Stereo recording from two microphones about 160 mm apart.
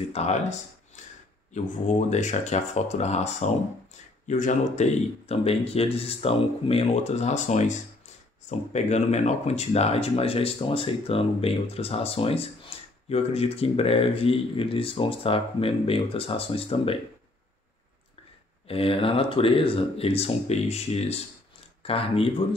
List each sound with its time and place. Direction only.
0.1 s speech: 45° left (ahead or behind)
1.0 s a sound: 50° left (ahead or behind)
1.5 s speech: 45° left (ahead or behind)
18.7 s speech: 35° left (ahead or behind)